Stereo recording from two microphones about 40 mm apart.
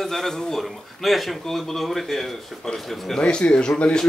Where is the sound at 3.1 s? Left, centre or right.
Left.